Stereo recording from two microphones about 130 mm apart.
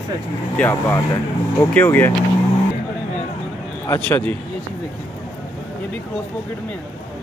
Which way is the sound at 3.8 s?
20° left (ahead or behind).